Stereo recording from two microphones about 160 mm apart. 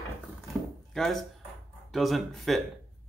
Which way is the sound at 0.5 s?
Centre (ahead or behind).